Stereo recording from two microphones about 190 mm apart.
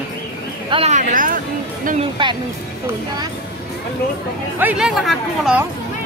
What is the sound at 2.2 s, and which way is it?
Speech, 25° right (ahead or behind).